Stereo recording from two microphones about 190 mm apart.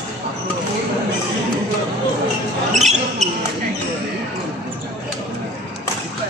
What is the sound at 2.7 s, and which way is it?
Basketball bounce, 35° right (ahead or behind).